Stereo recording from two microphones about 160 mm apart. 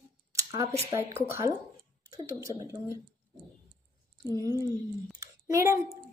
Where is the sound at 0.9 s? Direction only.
20° right (ahead or behind).